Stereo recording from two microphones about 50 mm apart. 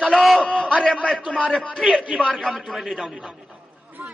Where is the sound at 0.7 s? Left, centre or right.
Centre.